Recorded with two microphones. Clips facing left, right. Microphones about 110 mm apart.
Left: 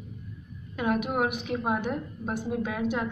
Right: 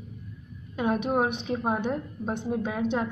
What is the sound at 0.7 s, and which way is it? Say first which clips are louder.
A woman's voice: right 2 dB; 25° right (ahead or behind).